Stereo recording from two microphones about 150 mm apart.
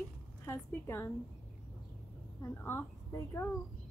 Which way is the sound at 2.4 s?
15° left (ahead or behind).